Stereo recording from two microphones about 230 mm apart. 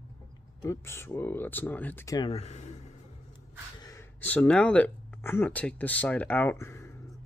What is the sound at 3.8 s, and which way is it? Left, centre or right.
Speech, centre.